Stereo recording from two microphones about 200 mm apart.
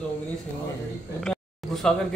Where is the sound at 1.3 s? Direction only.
Centre (ahead or behind).